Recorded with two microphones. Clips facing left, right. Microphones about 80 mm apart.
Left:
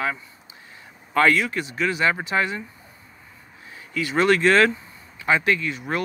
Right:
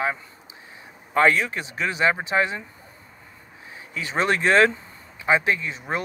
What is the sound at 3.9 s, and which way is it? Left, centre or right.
Speech, right.